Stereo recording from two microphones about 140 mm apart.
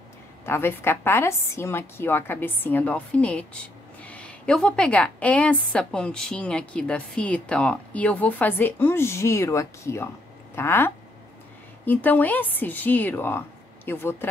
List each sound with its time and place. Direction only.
0.5 s a woman's voice: 15° left (ahead or behind)